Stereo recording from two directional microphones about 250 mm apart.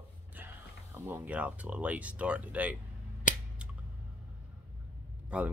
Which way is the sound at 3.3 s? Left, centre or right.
Left.